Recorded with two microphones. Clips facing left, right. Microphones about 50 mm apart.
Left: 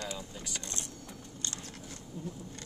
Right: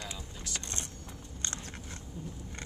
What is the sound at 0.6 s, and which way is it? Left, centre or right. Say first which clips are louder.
Vehicle: right 1 dB; right.